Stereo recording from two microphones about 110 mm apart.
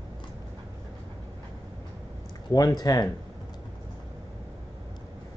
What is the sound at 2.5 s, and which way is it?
Speech, 35° left (ahead or behind).